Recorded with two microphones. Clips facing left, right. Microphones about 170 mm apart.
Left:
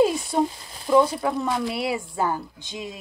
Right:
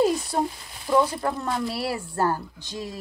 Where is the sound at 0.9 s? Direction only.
5° left (ahead or behind).